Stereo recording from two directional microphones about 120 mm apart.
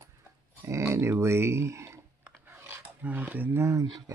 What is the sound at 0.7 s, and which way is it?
Speech, 25° right (ahead or behind).